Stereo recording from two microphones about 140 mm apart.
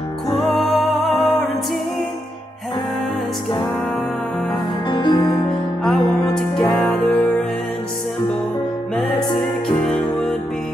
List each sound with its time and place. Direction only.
0.3 s music: centre (ahead or behind)
4.8 s music: 30° left (ahead or behind)
5.9 s music: 5° left (ahead or behind)